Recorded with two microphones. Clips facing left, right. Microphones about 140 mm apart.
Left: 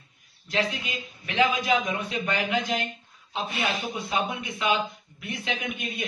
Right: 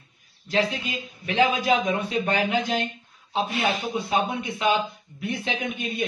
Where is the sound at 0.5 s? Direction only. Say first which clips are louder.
Right 3 dB; 35° right (ahead or behind).